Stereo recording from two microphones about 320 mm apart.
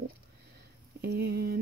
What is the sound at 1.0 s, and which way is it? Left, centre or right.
Speech, right.